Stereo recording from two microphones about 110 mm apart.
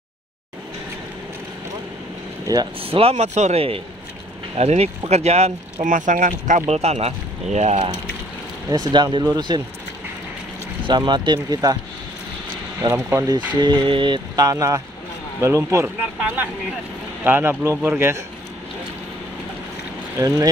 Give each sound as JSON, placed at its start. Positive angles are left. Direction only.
{"t": 2.4, "sound": "speech", "side_deg": -35}
{"t": 2.8, "sound": "speech", "side_deg": -60}
{"t": 4.6, "sound": "speech", "side_deg": -75}
{"t": 8.6, "sound": "mantra", "side_deg": -40}
{"t": 10.9, "sound": "mantra", "side_deg": -45}
{"t": 12.8, "sound": "speech", "side_deg": -45}
{"t": 13.6, "sound": "mantra", "side_deg": -40}
{"t": 15.4, "sound": "speech", "side_deg": -25}
{"t": 17.2, "sound": "speech", "side_deg": -20}
{"t": 20.2, "sound": "mantra", "side_deg": -35}